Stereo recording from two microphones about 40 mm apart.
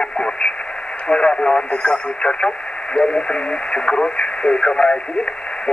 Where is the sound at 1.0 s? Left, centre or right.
Left.